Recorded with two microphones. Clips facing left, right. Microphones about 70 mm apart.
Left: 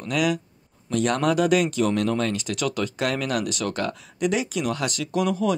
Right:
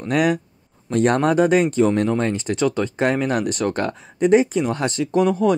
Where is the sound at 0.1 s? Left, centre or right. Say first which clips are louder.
Right 5 dB; right.